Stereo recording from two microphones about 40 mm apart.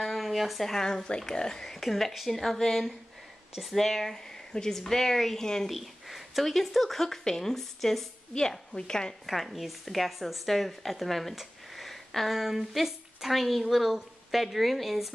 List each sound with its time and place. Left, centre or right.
0.0 s speech: centre
5.7 s a woman's voice: centre
8.4 s speech: centre
9.2 s a woman's voice: centre
11.7 s a sound: centre
12.7 s a woman's voice: centre